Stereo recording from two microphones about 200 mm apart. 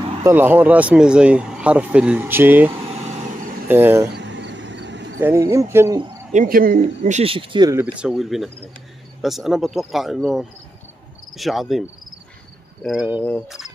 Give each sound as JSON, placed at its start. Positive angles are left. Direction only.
{"t": 0.2, "sound": "speech", "side_deg": -10}
{"t": 2.7, "sound": "vehicle", "side_deg": -30}
{"t": 3.6, "sound": "speech", "side_deg": -10}
{"t": 4.1, "sound": "vehicle", "side_deg": -60}
{"t": 5.5, "sound": "speech", "side_deg": -15}
{"t": 6.3, "sound": "speech", "side_deg": -40}
{"t": 7.8, "sound": "speech", "side_deg": -5}
{"t": 12.8, "sound": "speech", "side_deg": -5}
{"t": 13.2, "sound": "cricket", "side_deg": 5}